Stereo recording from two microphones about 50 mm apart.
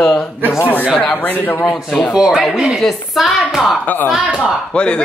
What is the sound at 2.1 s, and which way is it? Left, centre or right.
Speech, centre.